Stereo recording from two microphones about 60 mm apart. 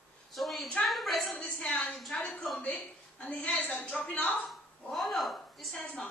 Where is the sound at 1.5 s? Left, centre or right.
Left.